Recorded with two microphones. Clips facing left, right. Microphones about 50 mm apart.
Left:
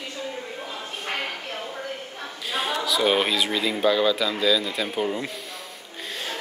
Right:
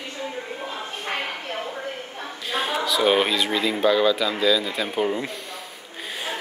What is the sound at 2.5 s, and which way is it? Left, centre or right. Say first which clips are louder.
Speech: right 1 dB; centre.